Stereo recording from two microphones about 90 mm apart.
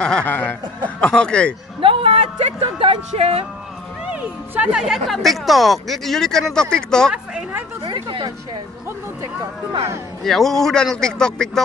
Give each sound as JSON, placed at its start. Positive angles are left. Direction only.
{"t": 0.0, "sound": "speech", "side_deg": 10}
{"t": 0.3, "sound": "speech", "side_deg": 20}
{"t": 1.8, "sound": "a sound", "side_deg": -85}
{"t": 2.8, "sound": "speech", "side_deg": -90}
{"t": 4.1, "sound": "speech", "side_deg": -15}
{"t": 7.8, "sound": "speech", "side_deg": -60}
{"t": 10.2, "sound": "speech", "side_deg": 5}